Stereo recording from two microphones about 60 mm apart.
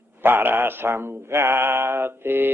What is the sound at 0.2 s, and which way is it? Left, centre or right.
Mantra, right.